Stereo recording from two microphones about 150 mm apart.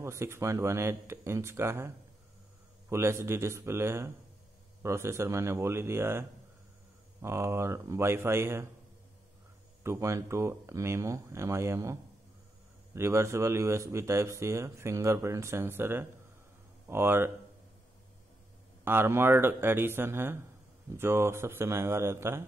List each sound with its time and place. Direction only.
0.0 s speech: 20° right (ahead or behind)
2.9 s speech: 20° right (ahead or behind)
9.8 s speech: 20° right (ahead or behind)
18.9 s speech: 15° right (ahead or behind)